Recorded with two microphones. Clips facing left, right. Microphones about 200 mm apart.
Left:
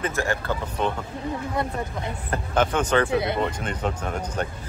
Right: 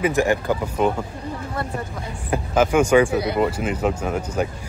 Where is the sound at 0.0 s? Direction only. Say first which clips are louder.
Right 7 dB; 15° right (ahead or behind).